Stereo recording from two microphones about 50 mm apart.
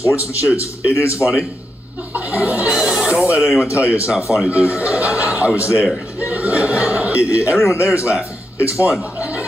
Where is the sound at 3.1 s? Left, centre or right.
Right.